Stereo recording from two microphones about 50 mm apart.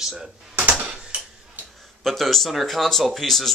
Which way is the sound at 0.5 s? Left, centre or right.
Right.